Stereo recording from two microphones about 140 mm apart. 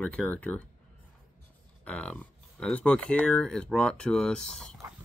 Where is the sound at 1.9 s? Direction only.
10° left (ahead or behind).